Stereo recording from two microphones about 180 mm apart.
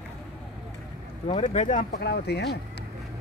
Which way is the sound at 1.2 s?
35° left (ahead or behind).